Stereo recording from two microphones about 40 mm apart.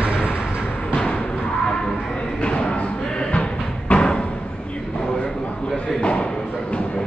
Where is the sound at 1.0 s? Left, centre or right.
Left.